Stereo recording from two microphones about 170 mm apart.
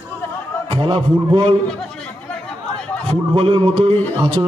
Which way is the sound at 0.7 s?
30° right (ahead or behind).